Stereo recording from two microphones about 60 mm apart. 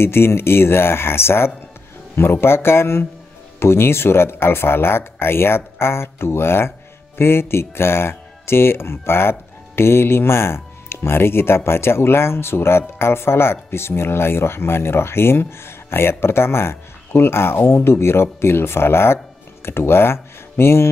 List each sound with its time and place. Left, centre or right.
0.0 s speech: left